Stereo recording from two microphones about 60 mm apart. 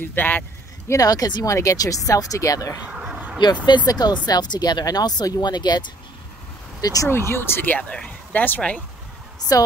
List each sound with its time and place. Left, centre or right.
0.0 s speech: left
0.8 s speech: left
2.8 s a sound: centre
3.8 s speech: left
6.8 s speech: left
7.1 s speech: left
9.5 s a woman's voice: left